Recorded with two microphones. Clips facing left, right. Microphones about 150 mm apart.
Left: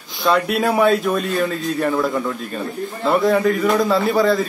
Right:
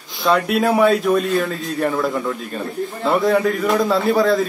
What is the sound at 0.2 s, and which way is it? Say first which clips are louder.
A man's voice: right 1 dB; centre (ahead or behind).